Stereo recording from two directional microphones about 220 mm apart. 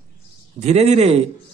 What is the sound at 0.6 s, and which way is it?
Speech, 30° right (ahead or behind).